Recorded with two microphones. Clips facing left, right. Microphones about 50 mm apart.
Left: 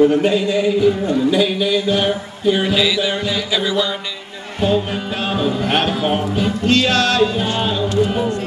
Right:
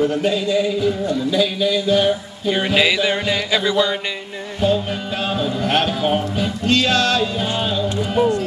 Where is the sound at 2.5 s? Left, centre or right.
Centre.